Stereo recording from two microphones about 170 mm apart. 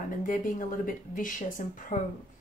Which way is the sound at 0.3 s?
50° left (ahead or behind).